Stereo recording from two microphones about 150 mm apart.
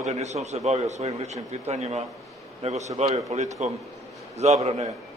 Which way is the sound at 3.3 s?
50° right (ahead or behind).